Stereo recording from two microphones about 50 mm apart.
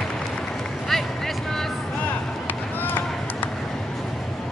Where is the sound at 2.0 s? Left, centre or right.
Left.